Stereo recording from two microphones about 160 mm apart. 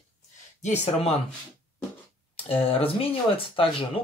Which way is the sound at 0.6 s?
45° left (ahead or behind).